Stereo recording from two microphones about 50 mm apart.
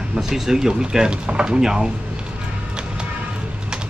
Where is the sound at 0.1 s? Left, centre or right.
Centre.